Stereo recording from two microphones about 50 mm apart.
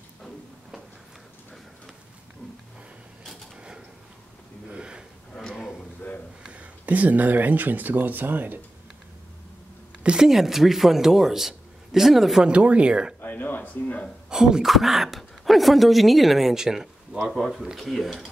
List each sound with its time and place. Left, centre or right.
4.6 s gasp: right
5.5 s a sound: centre
6.4 s speech: right
10.0 s speech: centre
12.4 s speech: right
13.2 s speech: left
14.3 s a sound: centre
14.7 s speech: centre